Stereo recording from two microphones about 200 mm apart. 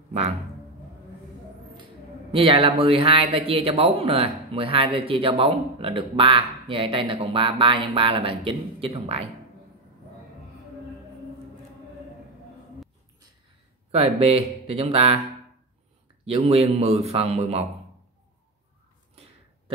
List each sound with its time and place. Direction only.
2.3 s speech: 25° right (ahead or behind)
13.9 s speech: 30° right (ahead or behind)
16.3 s a man's voice: 30° right (ahead or behind)